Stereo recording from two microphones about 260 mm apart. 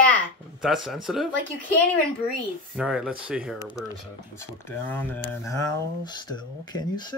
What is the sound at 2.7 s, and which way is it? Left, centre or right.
Speech, centre.